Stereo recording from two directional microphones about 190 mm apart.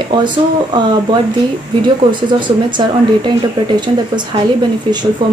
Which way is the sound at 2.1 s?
25° right (ahead or behind).